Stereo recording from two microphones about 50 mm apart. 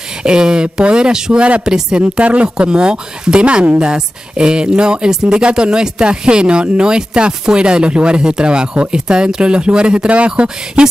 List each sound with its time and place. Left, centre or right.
0.2 s speech: centre